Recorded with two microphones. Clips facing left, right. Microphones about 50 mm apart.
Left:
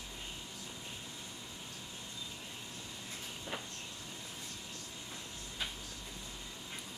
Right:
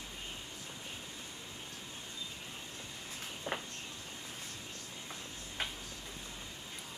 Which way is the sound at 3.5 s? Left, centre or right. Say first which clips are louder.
Right 4 dB; right.